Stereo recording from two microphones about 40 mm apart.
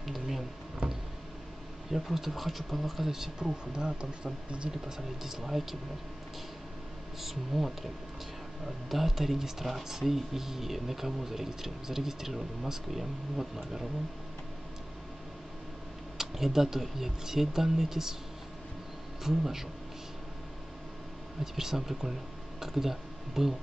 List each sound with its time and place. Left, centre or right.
0.0 s a sound: centre
1.9 s speech: centre
3.1 s speech: centre
3.7 s speech: right
4.8 s speech: centre
7.2 s speech: centre
16.2 s speech: centre
19.2 s speech: centre
21.5 s speech: centre